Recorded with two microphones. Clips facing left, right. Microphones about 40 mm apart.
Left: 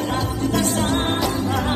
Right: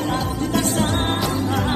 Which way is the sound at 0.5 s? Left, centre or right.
Right.